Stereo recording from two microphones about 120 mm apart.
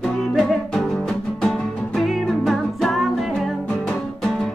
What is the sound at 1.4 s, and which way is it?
Music, centre (ahead or behind).